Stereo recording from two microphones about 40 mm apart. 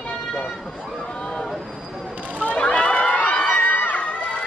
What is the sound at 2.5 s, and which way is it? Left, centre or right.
Crowd, left.